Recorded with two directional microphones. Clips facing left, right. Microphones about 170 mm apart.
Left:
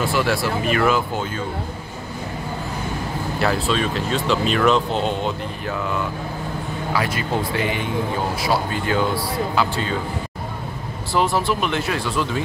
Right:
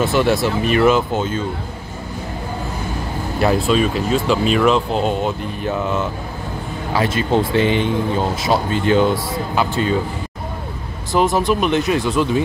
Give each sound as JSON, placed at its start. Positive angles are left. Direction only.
{"t": 0.0, "sound": "speech", "side_deg": -20}
{"t": 3.3, "sound": "speech", "side_deg": -15}
{"t": 5.7, "sound": "speech", "side_deg": -20}
{"t": 11.1, "sound": "speech", "side_deg": -15}